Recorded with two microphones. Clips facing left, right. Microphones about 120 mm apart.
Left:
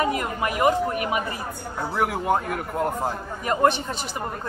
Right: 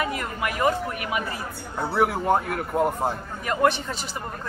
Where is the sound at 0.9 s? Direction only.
35° left (ahead or behind).